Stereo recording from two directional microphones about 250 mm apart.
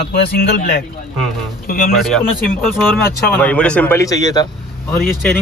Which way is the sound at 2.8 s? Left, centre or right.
Centre.